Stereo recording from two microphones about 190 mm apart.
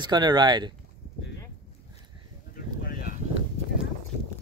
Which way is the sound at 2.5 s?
50° left (ahead or behind).